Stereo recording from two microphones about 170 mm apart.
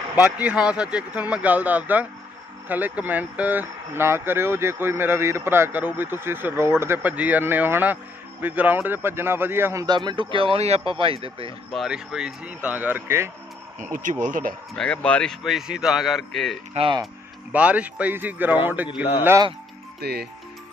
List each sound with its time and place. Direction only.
0.1 s speech: 10° right (ahead or behind); by 11.5 s 30° right (ahead or behind)
11.7 s speech: centre (ahead or behind)
13.7 s speech: 50° right (ahead or behind)
14.8 s a man's voice: 5° left (ahead or behind)
16.7 s speech: 30° right (ahead or behind)
17.0 s speech: 5° right (ahead or behind)
20.0 s speech: 70° right (ahead or behind)